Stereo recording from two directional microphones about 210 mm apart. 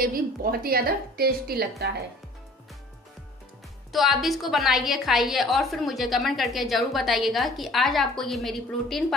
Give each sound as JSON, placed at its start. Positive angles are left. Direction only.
{"t": 0.0, "sound": "a woman's voice", "side_deg": -45}
{"t": 3.9, "sound": "a woman's voice", "side_deg": 0}